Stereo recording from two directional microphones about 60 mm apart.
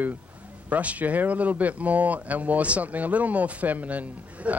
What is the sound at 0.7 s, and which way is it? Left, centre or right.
Speech, right.